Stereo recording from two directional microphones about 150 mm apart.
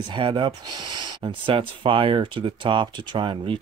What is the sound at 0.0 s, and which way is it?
Speech, 35° right (ahead or behind).